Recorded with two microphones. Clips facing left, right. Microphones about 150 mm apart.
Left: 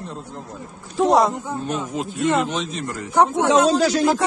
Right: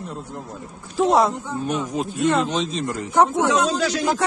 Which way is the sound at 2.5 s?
25° right (ahead or behind).